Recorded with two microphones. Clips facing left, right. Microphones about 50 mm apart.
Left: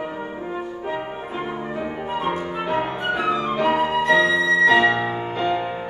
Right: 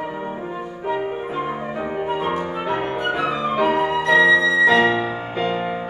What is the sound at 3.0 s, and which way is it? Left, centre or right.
Flute, centre.